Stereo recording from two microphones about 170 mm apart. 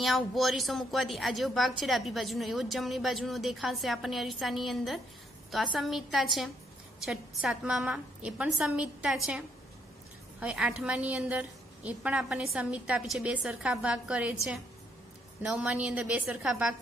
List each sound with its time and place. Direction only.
0.0 s a woman's voice: centre (ahead or behind)
10.4 s a woman's voice: 5° right (ahead or behind)